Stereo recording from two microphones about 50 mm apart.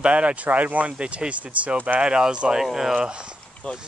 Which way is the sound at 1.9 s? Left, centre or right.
Centre.